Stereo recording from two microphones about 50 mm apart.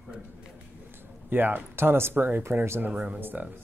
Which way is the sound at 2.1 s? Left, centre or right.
Right.